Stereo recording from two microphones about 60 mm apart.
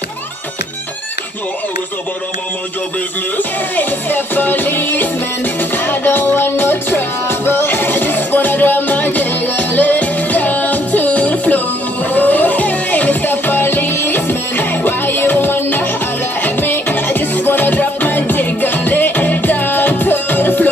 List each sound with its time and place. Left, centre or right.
3.7 s music: left